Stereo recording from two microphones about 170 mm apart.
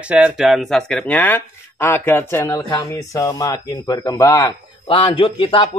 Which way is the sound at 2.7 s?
25° left (ahead or behind).